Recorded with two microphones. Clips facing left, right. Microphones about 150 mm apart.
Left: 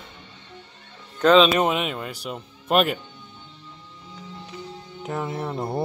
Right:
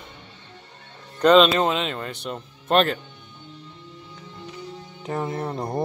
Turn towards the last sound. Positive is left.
turn(degrees=5)  # may be behind; listen again after turning